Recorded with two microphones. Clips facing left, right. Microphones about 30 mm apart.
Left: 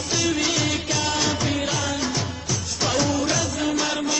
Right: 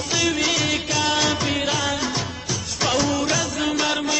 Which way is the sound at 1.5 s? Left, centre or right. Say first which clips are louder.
Right 2 dB; right.